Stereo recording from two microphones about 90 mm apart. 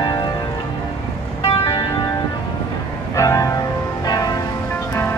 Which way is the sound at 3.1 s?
35° left (ahead or behind).